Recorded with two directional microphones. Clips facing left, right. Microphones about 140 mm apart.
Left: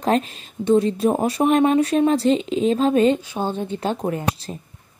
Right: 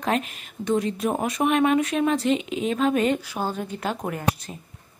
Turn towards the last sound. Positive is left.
turn(degrees=30)  # may be behind; listen again after turning